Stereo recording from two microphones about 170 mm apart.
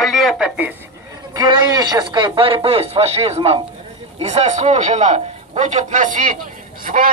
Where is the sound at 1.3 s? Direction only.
25° right (ahead or behind).